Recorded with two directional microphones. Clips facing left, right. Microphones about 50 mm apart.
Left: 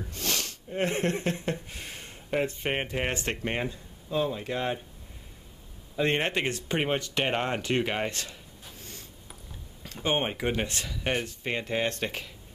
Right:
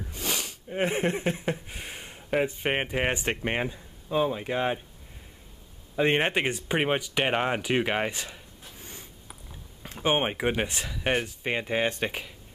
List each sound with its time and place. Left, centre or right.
0.1 s speech: centre
5.9 s speech: centre
8.7 s a sound: centre
9.8 s speech: centre